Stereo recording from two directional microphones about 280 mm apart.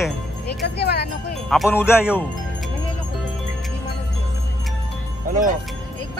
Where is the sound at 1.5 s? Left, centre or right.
Centre.